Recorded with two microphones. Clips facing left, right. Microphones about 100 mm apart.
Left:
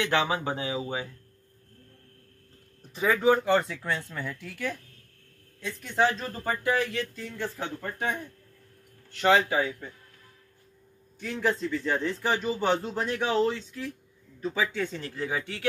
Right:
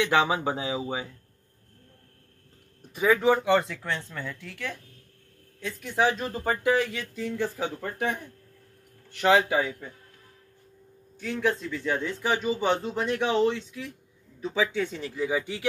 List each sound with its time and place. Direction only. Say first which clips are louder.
0.0 s speech: right 3 dB; 20° right (ahead or behind)
2.9 s speech: right 1 dB; centre (ahead or behind)
5.6 s speech: even; 5° right (ahead or behind)
9.2 s speech: right 1 dB; 15° right (ahead or behind)
9.7 s speech: even; 5° right (ahead or behind)
11.1 s speech: right 1 dB; centre (ahead or behind)